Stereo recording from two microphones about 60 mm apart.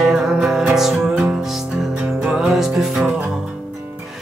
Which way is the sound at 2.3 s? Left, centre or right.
Centre.